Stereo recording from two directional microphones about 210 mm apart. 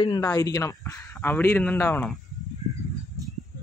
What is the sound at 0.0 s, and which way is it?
Speech, 20° left (ahead or behind).